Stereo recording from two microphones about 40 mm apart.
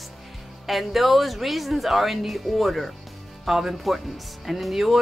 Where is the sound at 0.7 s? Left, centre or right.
Centre.